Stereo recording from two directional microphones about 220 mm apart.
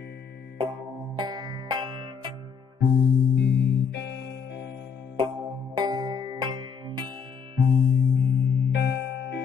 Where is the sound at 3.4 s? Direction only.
50° left (ahead or behind).